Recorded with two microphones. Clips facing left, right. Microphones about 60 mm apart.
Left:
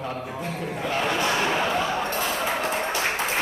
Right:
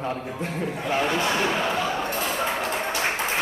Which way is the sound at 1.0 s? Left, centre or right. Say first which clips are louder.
Even; centre.